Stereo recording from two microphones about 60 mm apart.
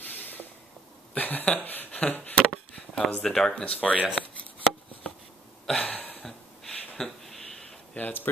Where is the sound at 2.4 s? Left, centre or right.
Centre.